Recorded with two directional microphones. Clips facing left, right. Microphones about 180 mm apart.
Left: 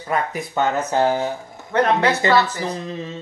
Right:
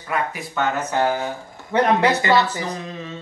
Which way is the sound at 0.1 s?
35° left (ahead or behind).